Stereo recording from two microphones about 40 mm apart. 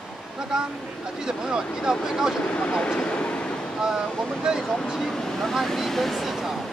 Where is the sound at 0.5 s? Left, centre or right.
Centre.